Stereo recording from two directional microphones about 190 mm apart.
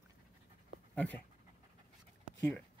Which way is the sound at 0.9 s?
10° left (ahead or behind).